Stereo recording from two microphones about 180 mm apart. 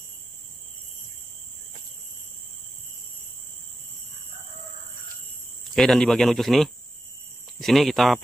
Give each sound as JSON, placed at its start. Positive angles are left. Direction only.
{"t": 5.8, "sound": "a man's voice", "side_deg": 5}